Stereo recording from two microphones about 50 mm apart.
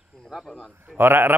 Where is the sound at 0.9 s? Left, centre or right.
Right.